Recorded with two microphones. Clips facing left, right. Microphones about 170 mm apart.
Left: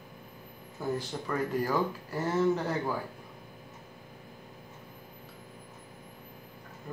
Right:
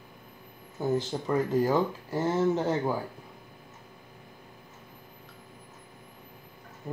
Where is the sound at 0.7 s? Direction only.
25° right (ahead or behind).